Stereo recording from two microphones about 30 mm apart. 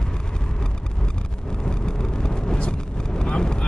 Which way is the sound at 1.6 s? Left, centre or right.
Left.